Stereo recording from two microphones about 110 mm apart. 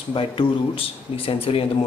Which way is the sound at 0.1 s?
55° left (ahead or behind).